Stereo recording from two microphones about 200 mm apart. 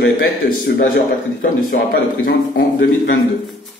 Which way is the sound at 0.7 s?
50° left (ahead or behind).